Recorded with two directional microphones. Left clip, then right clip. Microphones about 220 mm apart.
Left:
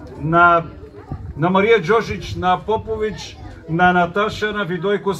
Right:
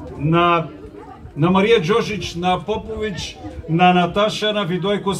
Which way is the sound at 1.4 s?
25° left (ahead or behind).